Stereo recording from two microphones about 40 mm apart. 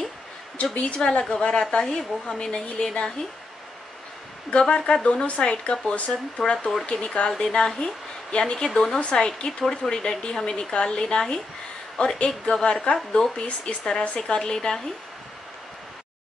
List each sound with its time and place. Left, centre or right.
0.7 s speech: left
4.5 s speech: left
6.4 s speech: left
7.3 s speech: centre
8.6 s speech: centre
9.1 s speech: centre